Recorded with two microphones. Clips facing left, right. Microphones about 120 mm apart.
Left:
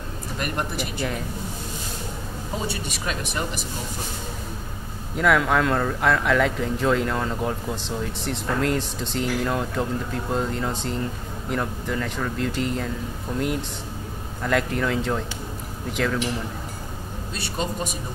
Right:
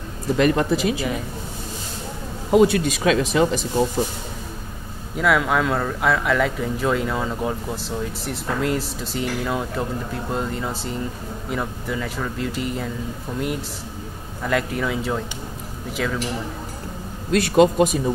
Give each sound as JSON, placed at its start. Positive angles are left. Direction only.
{"t": 0.4, "sound": "speech", "side_deg": -90}
{"t": 2.5, "sound": "speech", "side_deg": -90}
{"t": 5.1, "sound": "speech", "side_deg": 0}
{"t": 17.3, "sound": "speech", "side_deg": -90}